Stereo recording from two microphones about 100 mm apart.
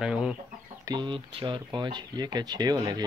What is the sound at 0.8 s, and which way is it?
Speech, 50° right (ahead or behind).